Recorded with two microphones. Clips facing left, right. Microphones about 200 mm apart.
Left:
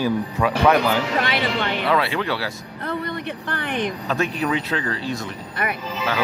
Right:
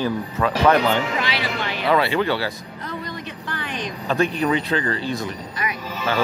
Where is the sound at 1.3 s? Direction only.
55° left (ahead or behind).